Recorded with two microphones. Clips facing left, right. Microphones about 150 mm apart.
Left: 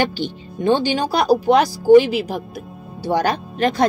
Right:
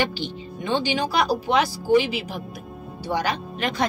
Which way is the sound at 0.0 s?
45° left (ahead or behind).